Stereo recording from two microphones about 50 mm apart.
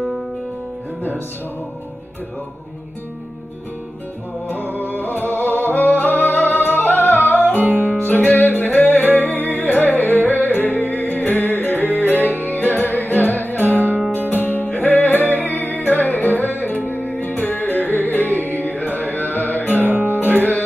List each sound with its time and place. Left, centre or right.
4.5 s music: left
19.8 s music: right
20.2 s music: left